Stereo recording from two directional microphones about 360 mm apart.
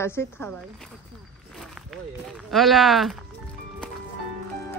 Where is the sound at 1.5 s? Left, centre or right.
Centre.